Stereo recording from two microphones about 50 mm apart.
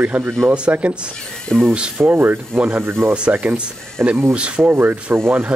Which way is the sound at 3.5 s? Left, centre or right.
Right.